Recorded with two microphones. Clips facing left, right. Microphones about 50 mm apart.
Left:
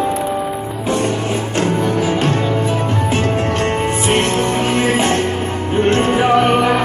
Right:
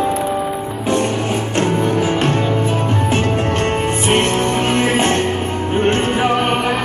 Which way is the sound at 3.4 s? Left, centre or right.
Right.